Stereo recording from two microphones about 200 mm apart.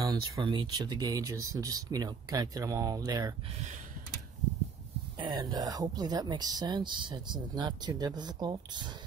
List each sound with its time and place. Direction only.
0.0 s speech: 20° right (ahead or behind)
5.2 s speech: 20° right (ahead or behind)